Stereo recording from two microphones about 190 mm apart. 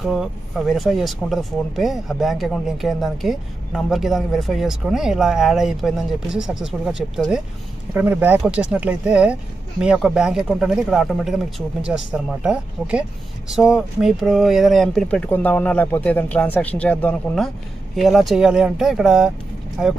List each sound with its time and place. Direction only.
0.0 s speech: centre (ahead or behind)